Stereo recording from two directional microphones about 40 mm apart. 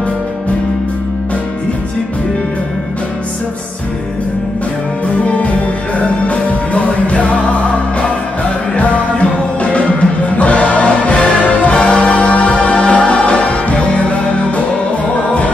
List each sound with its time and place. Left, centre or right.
5.0 s music: left